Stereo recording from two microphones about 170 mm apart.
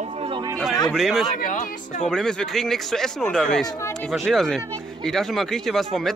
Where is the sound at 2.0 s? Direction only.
5° left (ahead or behind).